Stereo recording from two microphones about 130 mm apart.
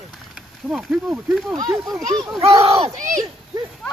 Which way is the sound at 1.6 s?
30° right (ahead or behind).